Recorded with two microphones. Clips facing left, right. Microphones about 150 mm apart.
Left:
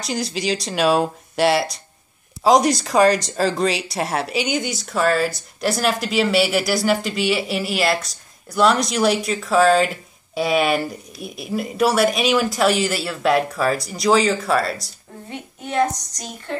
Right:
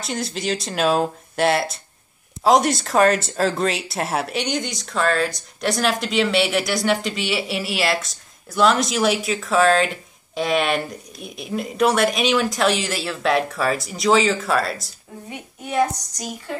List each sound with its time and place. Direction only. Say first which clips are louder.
0.0 s a woman's voice: left 2 dB; centre (ahead or behind)